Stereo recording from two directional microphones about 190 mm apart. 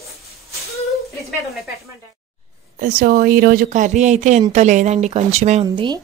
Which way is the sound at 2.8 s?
50° right (ahead or behind).